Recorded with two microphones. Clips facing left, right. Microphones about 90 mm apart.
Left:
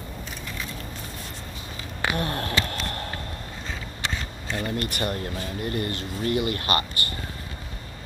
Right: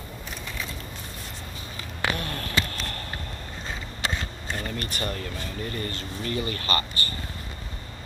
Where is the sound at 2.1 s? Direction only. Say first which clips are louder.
Left 3 dB; 45° left (ahead or behind).